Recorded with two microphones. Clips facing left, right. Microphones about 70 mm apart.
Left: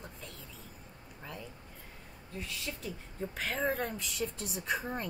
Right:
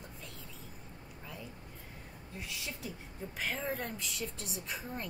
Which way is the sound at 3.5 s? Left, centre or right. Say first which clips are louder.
Left 7 dB; left.